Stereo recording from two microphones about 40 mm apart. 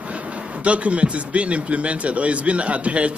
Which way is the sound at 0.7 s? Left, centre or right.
Right.